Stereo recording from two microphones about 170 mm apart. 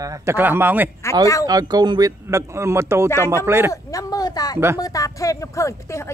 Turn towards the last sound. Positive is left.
turn(degrees=15)  # may be behind; listen again after turning